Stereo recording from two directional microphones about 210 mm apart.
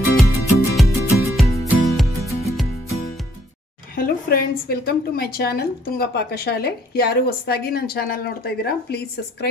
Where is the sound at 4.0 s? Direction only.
45° left (ahead or behind).